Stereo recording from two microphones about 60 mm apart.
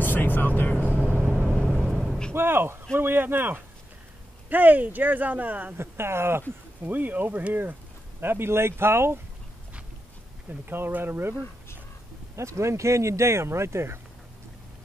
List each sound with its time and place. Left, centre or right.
0.0 s vehicle: left
1.4 s vehicle: centre
2.3 s speech: right
5.8 s speech: right
6.8 s speech: right
10.5 s speech: right
12.4 s speech: right